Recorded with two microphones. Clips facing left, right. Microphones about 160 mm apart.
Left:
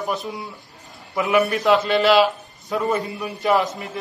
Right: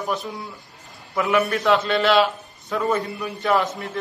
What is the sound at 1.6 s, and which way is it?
A man's voice, centre (ahead or behind).